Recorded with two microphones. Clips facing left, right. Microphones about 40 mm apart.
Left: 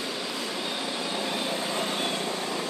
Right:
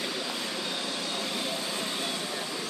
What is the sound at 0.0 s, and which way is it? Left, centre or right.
Vehicle, centre.